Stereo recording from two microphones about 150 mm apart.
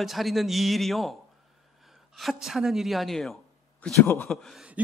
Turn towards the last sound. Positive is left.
turn(degrees=-5)  # may be behind; listen again after turning